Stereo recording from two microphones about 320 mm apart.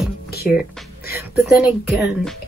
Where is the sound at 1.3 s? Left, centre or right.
Centre.